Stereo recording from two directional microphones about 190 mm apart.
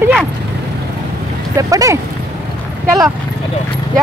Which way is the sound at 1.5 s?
15° right (ahead or behind).